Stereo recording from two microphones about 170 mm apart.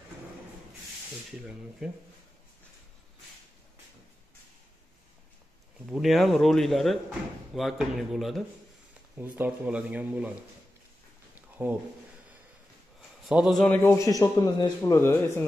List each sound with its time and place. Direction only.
1.8 s speech: 5° right (ahead or behind)
5.9 s speech: centre (ahead or behind)
11.3 s a sound: 10° right (ahead or behind)
13.3 s speech: 5° right (ahead or behind)
13.8 s speech: 20° left (ahead or behind)